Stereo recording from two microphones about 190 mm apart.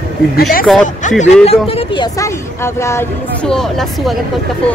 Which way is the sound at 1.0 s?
40° left (ahead or behind).